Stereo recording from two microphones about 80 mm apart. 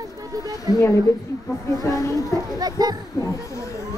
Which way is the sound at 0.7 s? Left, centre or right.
Left.